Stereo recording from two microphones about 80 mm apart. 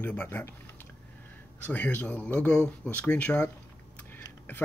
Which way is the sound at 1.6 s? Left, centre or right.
Left.